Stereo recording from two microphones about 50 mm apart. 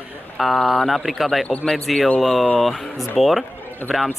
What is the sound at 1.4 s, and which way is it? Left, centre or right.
Speech, left.